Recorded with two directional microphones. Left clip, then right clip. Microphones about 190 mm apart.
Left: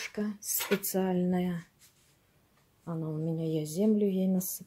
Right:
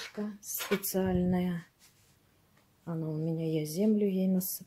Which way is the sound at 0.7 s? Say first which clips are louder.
Right 2 dB; 10° left (ahead or behind).